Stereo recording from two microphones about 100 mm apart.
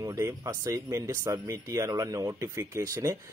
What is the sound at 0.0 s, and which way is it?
A man's voice, 35° right (ahead or behind).